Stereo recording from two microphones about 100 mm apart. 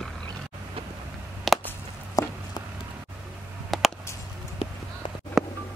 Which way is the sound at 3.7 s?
Centre (ahead or behind).